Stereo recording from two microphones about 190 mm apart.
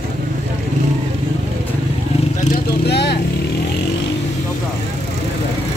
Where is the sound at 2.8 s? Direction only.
60° left (ahead or behind).